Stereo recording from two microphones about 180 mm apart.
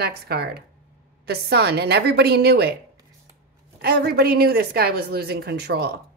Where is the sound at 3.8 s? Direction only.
60° right (ahead or behind).